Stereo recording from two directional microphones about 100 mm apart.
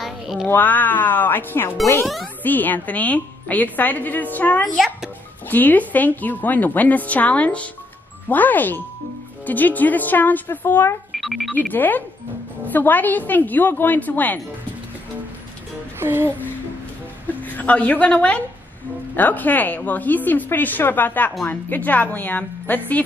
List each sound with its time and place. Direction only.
0.0 s a sound: centre (ahead or behind)
0.5 s a woman's voice: 20° left (ahead or behind)
4.7 s a child's voice: 5° right (ahead or behind)
5.5 s a woman's voice: 15° left (ahead or behind)
11.1 s music: centre (ahead or behind)
11.7 s a woman's voice: 20° left (ahead or behind)
16.0 s music: 25° right (ahead or behind)
17.3 s a woman's voice: 15° left (ahead or behind)